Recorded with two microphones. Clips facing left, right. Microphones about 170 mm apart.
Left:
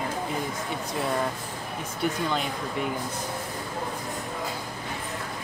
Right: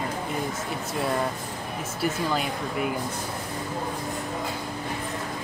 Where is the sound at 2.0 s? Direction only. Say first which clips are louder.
Right 1 dB; 5° right (ahead or behind).